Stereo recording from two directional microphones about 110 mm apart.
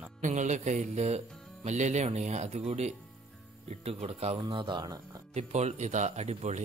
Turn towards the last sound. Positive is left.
turn(degrees=-85)